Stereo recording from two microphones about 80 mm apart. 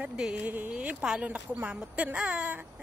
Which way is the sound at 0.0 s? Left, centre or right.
Centre.